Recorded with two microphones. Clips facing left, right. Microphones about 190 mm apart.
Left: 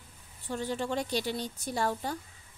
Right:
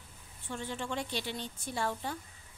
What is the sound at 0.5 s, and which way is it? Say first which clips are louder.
A woman's voice: left 5 dB; 40° left (ahead or behind).